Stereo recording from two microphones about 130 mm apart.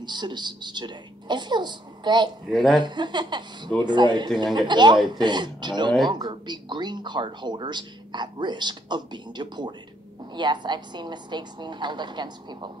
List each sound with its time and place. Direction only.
0.0 s speech: 35° right (ahead or behind)
2.5 s speech: centre (ahead or behind)
2.8 s speech: 35° right (ahead or behind)